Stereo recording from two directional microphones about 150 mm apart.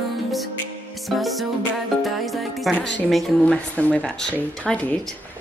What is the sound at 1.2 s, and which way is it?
Music, centre (ahead or behind).